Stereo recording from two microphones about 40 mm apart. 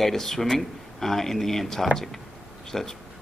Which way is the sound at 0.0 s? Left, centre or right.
Centre.